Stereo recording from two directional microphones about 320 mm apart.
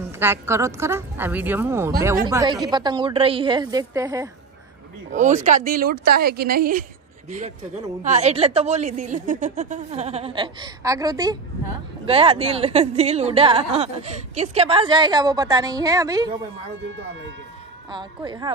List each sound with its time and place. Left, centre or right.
0.2 s a woman's voice: centre
5.1 s a woman's voice: right
17.9 s a woman's voice: centre